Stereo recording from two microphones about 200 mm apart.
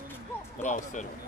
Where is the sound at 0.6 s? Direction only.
40° left (ahead or behind).